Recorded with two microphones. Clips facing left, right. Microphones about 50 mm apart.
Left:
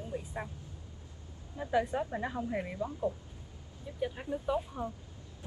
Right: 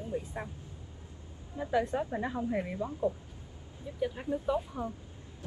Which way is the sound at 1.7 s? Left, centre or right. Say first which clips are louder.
Right 1 dB; centre.